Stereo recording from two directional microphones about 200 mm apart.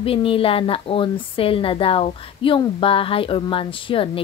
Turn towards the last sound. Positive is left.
turn(degrees=25)  # may be behind; listen again after turning